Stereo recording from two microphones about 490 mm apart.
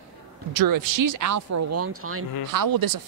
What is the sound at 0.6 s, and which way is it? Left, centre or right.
Speech, right.